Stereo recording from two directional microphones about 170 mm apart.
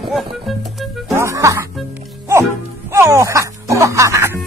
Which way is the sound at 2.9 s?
15° right (ahead or behind).